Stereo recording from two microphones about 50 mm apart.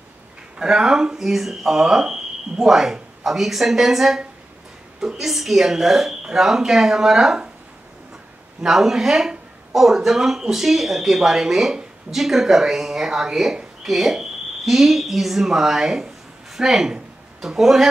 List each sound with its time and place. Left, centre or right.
0.6 s speech: centre
8.6 s a woman's voice: centre